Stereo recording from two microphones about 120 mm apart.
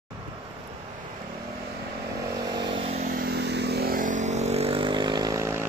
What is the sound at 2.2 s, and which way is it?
Vehicle, 30° right (ahead or behind).